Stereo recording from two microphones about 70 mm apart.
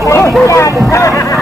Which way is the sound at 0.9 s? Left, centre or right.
Left.